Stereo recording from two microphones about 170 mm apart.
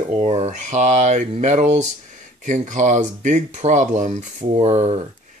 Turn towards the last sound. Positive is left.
turn(degrees=-40)  # may be behind; listen again after turning